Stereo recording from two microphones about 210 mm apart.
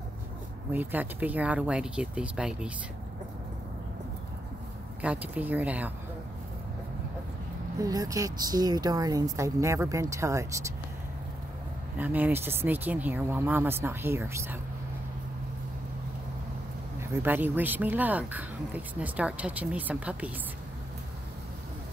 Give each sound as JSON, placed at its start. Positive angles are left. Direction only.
{"t": 0.7, "sound": "speech", "side_deg": -10}
{"t": 5.0, "sound": "speech", "side_deg": -5}
{"t": 7.8, "sound": "speech", "side_deg": -15}
{"t": 12.0, "sound": "speech", "side_deg": -10}
{"t": 17.0, "sound": "speech", "side_deg": -10}